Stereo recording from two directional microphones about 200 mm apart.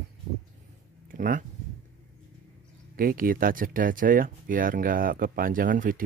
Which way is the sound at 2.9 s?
45° right (ahead or behind).